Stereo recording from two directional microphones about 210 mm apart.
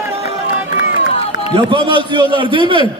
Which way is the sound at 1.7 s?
25° right (ahead or behind).